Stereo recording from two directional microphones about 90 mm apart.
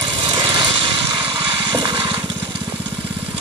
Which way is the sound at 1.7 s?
55° right (ahead or behind).